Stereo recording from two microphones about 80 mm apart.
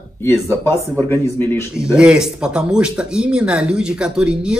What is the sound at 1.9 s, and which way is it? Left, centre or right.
Speech, centre.